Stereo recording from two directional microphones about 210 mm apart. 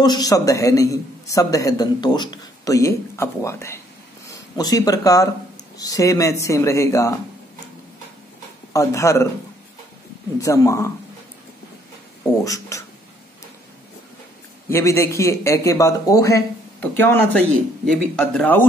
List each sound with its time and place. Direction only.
0.0 s a man's voice: 20° left (ahead or behind)
8.7 s a man's voice: 15° left (ahead or behind)
10.4 s a man's voice: 15° left (ahead or behind)
12.4 s speech: 15° left (ahead or behind)
14.7 s a man's voice: 15° left (ahead or behind)